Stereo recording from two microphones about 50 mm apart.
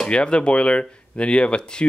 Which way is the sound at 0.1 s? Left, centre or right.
Left.